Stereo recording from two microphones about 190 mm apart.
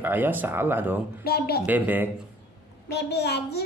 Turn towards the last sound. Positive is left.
turn(degrees=60)  # may be behind; listen again after turning